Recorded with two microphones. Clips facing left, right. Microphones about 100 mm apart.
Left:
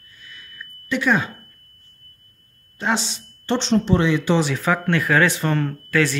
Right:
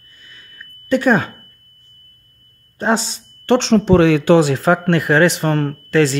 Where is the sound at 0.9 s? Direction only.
45° right (ahead or behind).